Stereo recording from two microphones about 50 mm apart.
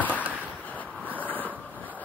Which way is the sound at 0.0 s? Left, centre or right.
Right.